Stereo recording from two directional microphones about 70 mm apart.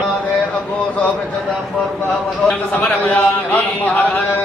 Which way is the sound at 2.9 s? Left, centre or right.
Left.